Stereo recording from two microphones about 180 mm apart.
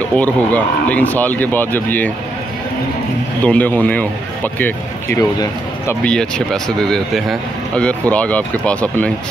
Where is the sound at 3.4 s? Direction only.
10° left (ahead or behind).